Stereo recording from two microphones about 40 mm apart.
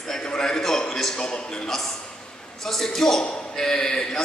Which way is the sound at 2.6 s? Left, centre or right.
Centre.